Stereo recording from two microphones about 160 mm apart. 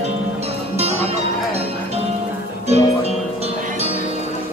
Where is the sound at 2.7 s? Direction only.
40° right (ahead or behind).